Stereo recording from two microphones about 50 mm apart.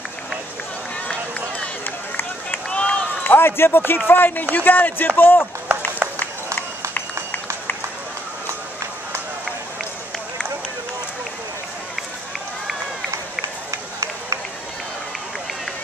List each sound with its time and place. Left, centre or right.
1.9 s run: left
2.7 s run: centre
3.3 s speech: left
5.7 s run: right